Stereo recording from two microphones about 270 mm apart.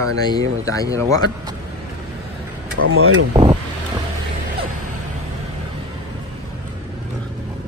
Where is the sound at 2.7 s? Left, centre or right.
Right.